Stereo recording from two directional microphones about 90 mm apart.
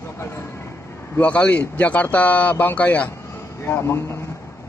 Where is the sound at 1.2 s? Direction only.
15° left (ahead or behind).